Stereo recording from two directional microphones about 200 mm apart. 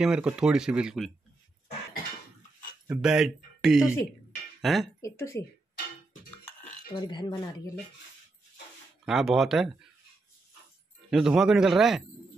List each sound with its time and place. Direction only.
0.0 s speech: 5° right (ahead or behind)
2.9 s speech: 5° right (ahead or behind)
5.0 s speech: 15° left (ahead or behind)
6.9 s speech: 20° left (ahead or behind)
9.0 s speech: centre (ahead or behind)
11.1 s speech: centre (ahead or behind)